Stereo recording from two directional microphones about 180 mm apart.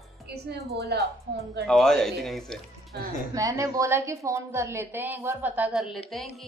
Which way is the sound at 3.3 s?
20° right (ahead or behind).